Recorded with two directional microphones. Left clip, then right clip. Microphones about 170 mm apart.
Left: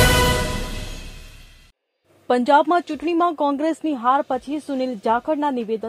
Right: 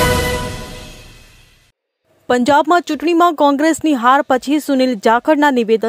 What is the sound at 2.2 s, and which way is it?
Speech, 40° right (ahead or behind).